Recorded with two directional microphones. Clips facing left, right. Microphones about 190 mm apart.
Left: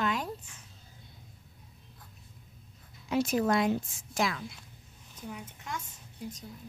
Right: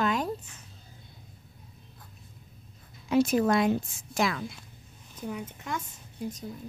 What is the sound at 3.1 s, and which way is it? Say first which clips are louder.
A woman's voice: right 4 dB; 60° right (ahead or behind).